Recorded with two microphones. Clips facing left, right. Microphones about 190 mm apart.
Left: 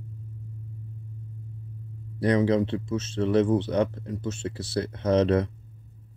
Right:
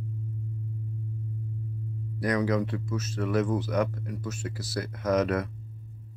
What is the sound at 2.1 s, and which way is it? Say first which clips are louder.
Speech: left 4 dB; 30° left (ahead or behind).